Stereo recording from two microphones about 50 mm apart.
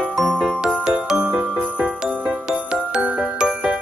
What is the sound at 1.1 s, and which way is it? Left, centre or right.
Jingle bell, right.